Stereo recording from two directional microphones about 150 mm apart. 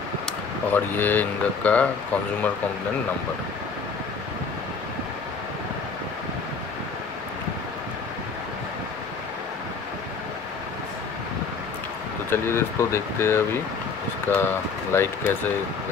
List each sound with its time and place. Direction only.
0.7 s speech: 15° left (ahead or behind)
12.3 s speech: 15° left (ahead or behind)